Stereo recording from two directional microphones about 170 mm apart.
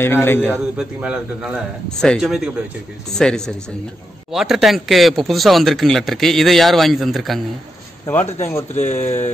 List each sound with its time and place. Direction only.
0.0 s a man's voice: 15° left (ahead or behind)
0.7 s speech: 5° right (ahead or behind)
8.4 s a man's voice: 15° left (ahead or behind)
8.7 s speech: 40° left (ahead or behind)